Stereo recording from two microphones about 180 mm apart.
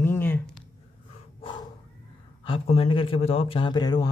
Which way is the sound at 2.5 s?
30° left (ahead or behind).